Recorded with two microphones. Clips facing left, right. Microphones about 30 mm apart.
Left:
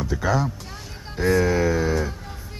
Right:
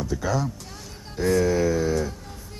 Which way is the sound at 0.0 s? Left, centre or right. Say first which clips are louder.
Left 3 dB; centre.